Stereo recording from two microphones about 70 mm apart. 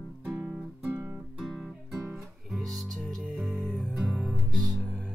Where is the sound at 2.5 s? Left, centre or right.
Centre.